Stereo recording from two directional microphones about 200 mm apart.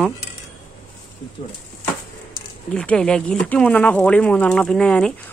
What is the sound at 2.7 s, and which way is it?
Speech, 5° left (ahead or behind).